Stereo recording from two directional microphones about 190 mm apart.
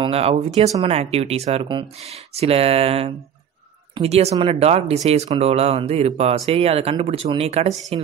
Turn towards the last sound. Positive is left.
turn(degrees=-35)  # may be behind; listen again after turning